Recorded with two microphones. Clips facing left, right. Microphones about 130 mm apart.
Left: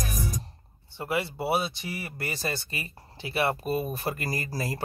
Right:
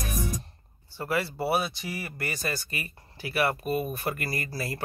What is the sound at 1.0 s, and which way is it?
Speech, 20° left (ahead or behind).